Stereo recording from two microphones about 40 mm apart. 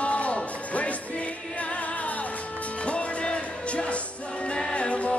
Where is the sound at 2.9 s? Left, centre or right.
Left.